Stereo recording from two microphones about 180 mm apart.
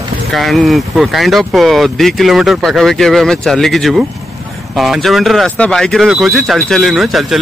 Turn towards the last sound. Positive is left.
turn(degrees=0)  # may be behind; listen again after turning